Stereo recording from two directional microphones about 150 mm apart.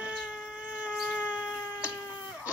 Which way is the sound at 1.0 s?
10° left (ahead or behind).